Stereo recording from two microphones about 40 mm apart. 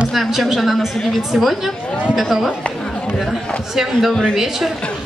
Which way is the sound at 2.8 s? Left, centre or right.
Centre.